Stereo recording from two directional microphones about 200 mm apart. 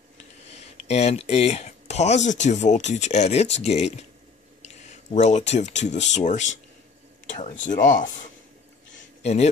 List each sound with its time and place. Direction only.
0.5 s speech: 30° left (ahead or behind)
4.6 s a sound: 35° left (ahead or behind)
6.1 s speech: 35° left (ahead or behind)
9.2 s a man's voice: 35° left (ahead or behind)